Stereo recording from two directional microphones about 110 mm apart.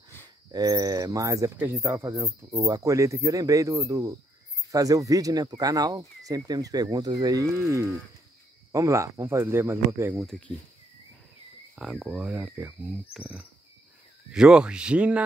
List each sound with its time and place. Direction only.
0.5 s speech: 35° right (ahead or behind)
11.7 s speech: 5° right (ahead or behind)